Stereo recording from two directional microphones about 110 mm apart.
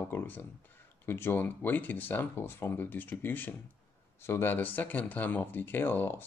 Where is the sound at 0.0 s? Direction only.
20° left (ahead or behind).